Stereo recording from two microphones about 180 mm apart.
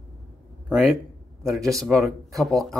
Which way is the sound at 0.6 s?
5° right (ahead or behind).